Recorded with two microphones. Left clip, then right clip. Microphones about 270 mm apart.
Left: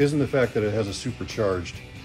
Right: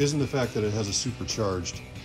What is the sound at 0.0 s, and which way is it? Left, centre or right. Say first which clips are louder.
Speech: left 5 dB; centre.